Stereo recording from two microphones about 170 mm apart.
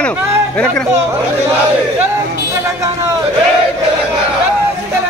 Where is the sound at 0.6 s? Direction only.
5° left (ahead or behind).